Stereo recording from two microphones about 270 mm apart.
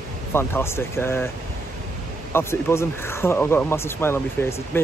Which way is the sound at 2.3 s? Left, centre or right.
Centre.